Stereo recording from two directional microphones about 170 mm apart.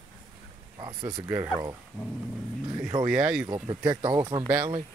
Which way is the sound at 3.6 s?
25° right (ahead or behind).